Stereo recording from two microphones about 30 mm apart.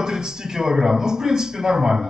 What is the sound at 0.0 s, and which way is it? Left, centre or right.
A man's voice, right.